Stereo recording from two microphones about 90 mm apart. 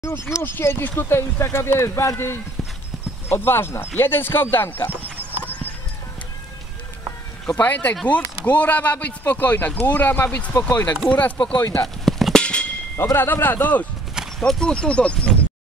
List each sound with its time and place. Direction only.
0.3 s speech: 25° left (ahead or behind)
7.6 s speech: 20° left (ahead or behind)
11.6 s speech: 35° left (ahead or behind)
12.0 s drum: centre (ahead or behind)
12.9 s speech: 30° left (ahead or behind)
14.4 s speech: 10° left (ahead or behind)